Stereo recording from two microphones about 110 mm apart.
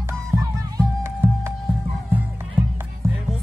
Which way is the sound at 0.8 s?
25° right (ahead or behind).